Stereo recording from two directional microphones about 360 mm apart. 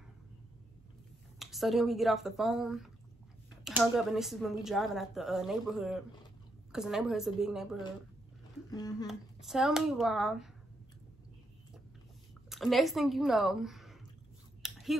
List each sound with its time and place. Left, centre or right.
1.4 s speech: centre
8.6 s speech: centre
9.0 s speech: centre
12.4 s speech: centre
14.6 s scissors: centre